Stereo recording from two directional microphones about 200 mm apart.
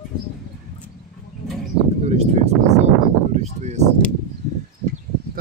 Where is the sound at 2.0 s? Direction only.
35° right (ahead or behind).